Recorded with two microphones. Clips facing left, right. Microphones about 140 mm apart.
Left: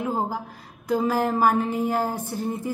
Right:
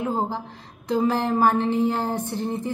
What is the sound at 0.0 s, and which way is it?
A woman's voice, 5° left (ahead or behind).